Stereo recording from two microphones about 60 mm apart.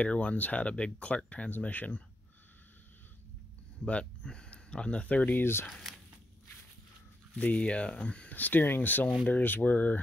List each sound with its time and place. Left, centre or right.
0.0 s speech: left
3.8 s speech: centre
5.4 s speech: left
7.3 s speech: left